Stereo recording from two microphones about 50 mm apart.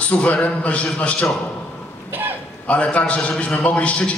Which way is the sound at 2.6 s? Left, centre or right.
Left.